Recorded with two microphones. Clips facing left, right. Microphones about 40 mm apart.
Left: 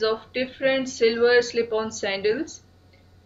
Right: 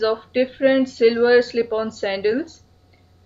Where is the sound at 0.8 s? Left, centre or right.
Centre.